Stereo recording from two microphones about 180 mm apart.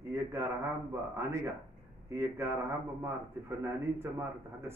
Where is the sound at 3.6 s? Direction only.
15° right (ahead or behind).